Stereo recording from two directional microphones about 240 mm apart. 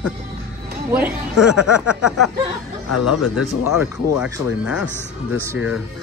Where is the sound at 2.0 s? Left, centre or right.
Left.